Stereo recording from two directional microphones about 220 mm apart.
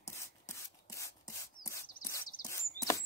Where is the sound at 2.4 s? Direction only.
40° left (ahead or behind).